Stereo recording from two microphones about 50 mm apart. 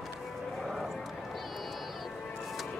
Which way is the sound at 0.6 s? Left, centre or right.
Centre.